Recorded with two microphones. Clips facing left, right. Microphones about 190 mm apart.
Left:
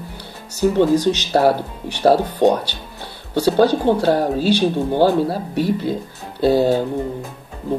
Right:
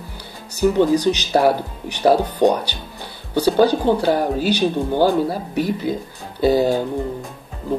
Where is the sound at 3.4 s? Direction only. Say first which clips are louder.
Left 1 dB; centre (ahead or behind).